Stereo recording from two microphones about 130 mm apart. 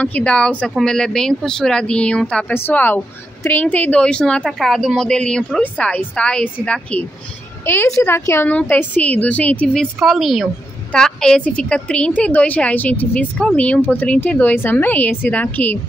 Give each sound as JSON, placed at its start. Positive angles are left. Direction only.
{"t": 0.0, "sound": "a woman's voice", "side_deg": 10}
{"t": 9.9, "sound": "a woman's voice", "side_deg": 0}